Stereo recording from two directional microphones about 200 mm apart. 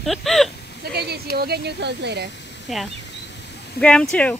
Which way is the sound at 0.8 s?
55° right (ahead or behind).